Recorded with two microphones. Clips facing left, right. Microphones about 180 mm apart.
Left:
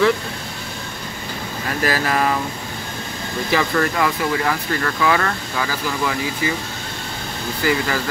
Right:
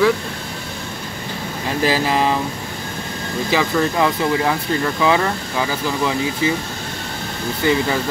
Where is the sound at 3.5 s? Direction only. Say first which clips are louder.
Right 1 dB; 15° right (ahead or behind).